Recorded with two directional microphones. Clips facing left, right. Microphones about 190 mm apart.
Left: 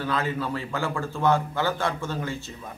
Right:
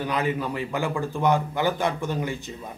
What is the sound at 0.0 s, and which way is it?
A man's voice, 15° right (ahead or behind).